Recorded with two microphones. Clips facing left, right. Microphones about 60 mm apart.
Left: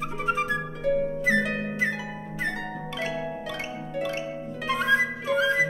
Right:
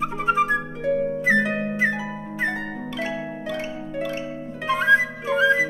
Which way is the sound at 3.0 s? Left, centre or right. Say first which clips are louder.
Right 1 dB; centre.